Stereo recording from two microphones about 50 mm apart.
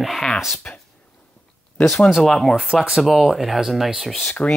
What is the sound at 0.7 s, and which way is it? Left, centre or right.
Speech, centre.